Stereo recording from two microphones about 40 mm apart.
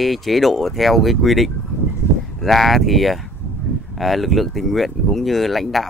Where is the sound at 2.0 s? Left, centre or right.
Left.